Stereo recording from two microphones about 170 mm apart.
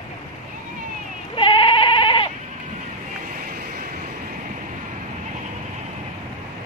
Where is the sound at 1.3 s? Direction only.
30° left (ahead or behind).